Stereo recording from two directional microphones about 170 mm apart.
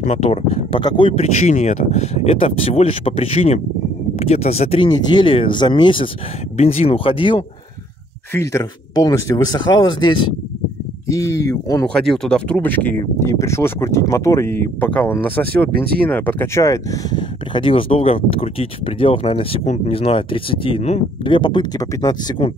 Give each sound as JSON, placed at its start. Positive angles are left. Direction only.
{"t": 0.0, "sound": "speech", "side_deg": 40}
{"t": 8.3, "sound": "speech", "side_deg": 15}
{"t": 11.9, "sound": "speech", "side_deg": 0}